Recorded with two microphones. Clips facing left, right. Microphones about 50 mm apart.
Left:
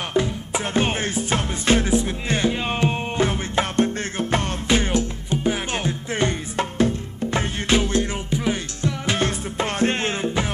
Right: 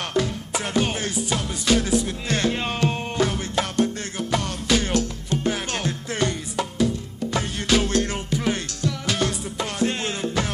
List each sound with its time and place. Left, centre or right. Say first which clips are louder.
0.1 s music: left 3 dB; left
7.8 s music: even; centre
8.8 s music: left 2 dB; left
10.2 s music: left 1 dB; left